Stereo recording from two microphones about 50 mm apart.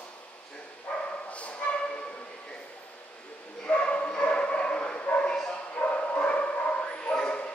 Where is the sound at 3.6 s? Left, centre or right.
Left.